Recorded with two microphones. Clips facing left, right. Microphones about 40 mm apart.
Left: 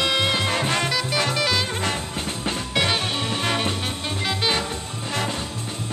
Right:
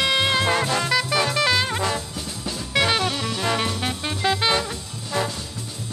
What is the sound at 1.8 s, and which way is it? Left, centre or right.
Music, left.